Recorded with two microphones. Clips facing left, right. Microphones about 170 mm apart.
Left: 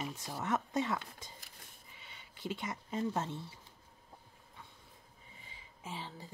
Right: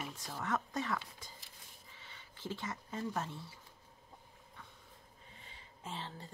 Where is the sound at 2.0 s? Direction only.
15° left (ahead or behind).